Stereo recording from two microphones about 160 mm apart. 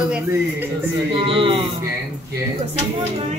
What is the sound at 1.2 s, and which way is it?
Speech, 35° right (ahead or behind).